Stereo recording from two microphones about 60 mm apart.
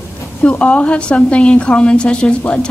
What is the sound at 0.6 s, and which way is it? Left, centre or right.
A woman's voice, left.